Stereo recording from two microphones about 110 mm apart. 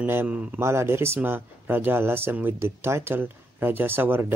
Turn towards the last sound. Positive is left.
turn(degrees=-20)  # may be behind; listen again after turning